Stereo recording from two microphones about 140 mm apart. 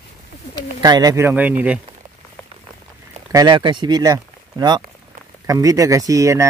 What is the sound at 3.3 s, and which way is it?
Speech, 30° right (ahead or behind).